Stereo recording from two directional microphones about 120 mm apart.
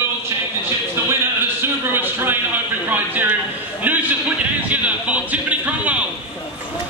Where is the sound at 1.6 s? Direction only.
20° right (ahead or behind).